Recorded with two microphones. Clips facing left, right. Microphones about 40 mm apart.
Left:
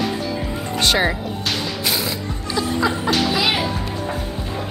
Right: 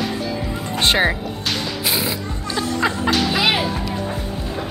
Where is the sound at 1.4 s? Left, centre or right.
Centre.